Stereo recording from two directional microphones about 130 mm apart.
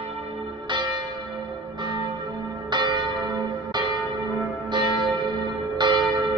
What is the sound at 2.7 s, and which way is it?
Church bell, 35° right (ahead or behind).